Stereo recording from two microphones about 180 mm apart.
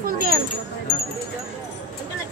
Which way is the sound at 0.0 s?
55° right (ahead or behind).